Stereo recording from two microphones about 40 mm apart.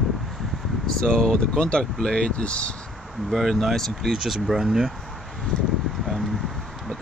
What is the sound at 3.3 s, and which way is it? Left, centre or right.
Speech, centre.